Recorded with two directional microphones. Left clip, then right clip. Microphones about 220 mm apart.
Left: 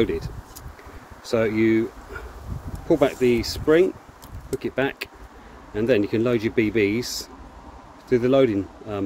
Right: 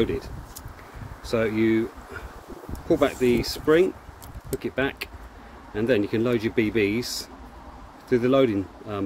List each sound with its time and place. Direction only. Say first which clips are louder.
0.0 s speech: left 2 dB; 15° left (ahead or behind)
2.9 s speech: left 2 dB; 15° left (ahead or behind)